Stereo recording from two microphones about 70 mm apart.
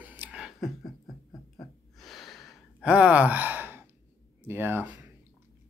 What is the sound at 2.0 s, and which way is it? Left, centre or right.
Gasp, centre.